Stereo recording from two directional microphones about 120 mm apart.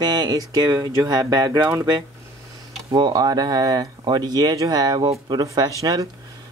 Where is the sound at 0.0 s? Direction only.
35° right (ahead or behind).